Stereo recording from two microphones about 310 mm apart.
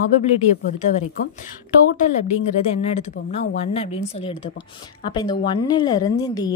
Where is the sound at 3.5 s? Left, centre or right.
Centre.